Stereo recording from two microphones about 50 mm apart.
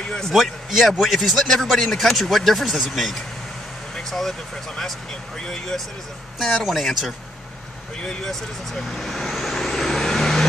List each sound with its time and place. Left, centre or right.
0.3 s a man's voice: centre
3.9 s air conditioning: centre
5.4 s a man's voice: centre
8.0 s vehicle: centre